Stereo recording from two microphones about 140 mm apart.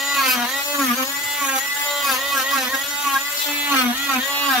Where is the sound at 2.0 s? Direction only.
Centre (ahead or behind).